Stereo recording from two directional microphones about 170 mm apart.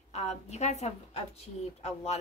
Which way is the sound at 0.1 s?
40° left (ahead or behind).